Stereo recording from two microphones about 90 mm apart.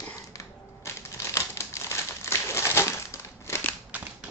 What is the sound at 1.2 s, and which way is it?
Crumpling, 35° left (ahead or behind).